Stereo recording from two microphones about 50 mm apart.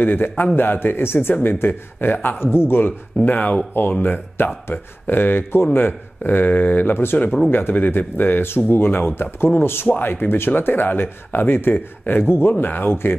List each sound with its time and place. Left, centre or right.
0.0 s speech: left
2.4 s speech: left
3.2 s speech: left
9.8 s speech: left